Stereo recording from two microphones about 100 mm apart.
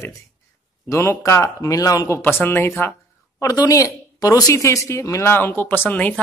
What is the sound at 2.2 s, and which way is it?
Speech, 20° left (ahead or behind).